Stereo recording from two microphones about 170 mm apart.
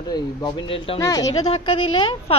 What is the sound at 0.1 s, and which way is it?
Speech, 30° left (ahead or behind).